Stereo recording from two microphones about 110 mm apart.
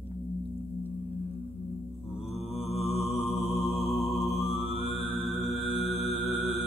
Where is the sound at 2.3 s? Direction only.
70° left (ahead or behind).